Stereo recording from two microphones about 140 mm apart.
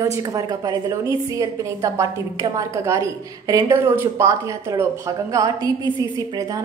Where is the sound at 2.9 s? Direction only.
25° right (ahead or behind).